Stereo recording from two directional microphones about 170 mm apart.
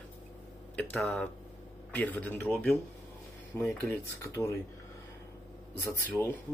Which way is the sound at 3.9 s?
15° left (ahead or behind).